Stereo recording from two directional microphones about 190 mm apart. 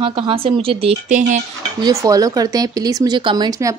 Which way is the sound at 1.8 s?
20° right (ahead or behind).